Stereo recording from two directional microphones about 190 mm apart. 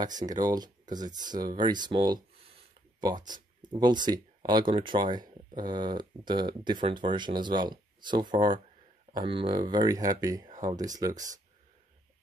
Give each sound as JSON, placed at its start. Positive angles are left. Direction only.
{"t": 0.0, "sound": "speech", "side_deg": -20}